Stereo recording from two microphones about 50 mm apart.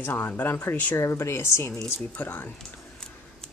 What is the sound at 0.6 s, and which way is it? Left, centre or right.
Speech, left.